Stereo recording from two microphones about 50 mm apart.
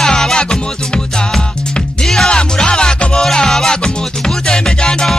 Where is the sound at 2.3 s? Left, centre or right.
Centre.